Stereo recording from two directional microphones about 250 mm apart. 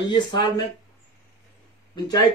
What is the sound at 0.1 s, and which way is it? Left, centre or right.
Speech, centre.